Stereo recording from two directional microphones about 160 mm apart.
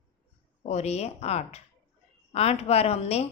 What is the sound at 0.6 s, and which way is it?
A woman's voice, 45° left (ahead or behind).